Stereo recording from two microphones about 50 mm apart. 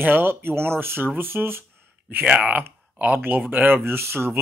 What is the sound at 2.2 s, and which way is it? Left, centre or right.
Speech, right.